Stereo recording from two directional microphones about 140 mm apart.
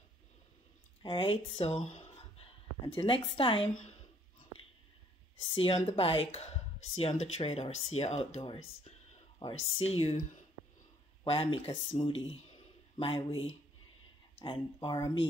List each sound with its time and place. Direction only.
1.0 s speech: 40° left (ahead or behind)
2.9 s speech: 40° left (ahead or behind)
5.4 s speech: 40° left (ahead or behind)
14.4 s speech: 35° left (ahead or behind)